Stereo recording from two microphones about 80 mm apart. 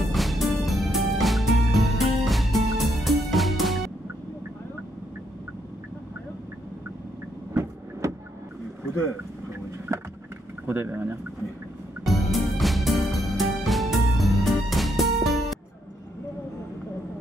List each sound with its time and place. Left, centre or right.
0.1 s music: centre
8.0 s vehicle: right
10.7 s speech: right
12.0 s music: centre